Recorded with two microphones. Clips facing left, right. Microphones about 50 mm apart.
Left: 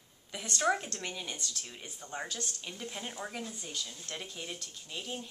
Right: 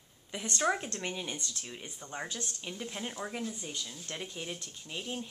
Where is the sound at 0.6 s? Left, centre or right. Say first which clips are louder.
Left 1 dB; centre.